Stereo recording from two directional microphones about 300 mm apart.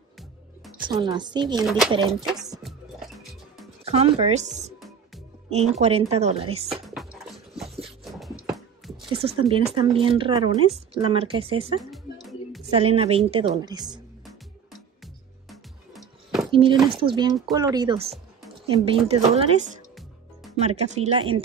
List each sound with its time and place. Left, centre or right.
0.8 s speech: centre
1.6 s speech: centre
2.6 s music: centre
3.8 s speech: right
4.7 s music: centre
5.5 s a woman's voice: right
7.2 s music: centre
8.5 s a sound: centre
9.0 s speech: centre
11.8 s music: centre
12.7 s a woman's voice: centre
16.5 s a woman's voice: centre